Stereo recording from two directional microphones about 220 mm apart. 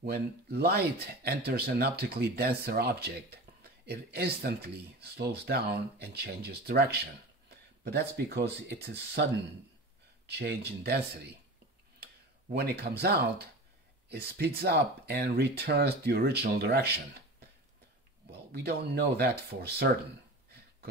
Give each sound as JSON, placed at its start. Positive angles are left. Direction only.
{"t": 0.0, "sound": "speech", "side_deg": -45}
{"t": 10.2, "sound": "speech", "side_deg": -50}
{"t": 18.5, "sound": "speech", "side_deg": -45}